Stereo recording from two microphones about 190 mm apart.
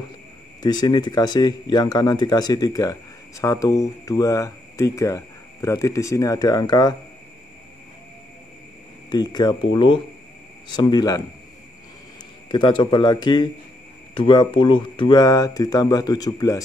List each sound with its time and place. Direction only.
0.6 s speech: 20° left (ahead or behind)
9.1 s speech: 20° left (ahead or behind)
12.4 s speech: 25° left (ahead or behind)